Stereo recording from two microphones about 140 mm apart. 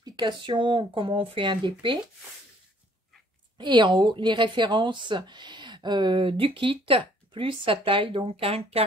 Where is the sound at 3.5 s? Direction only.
35° right (ahead or behind).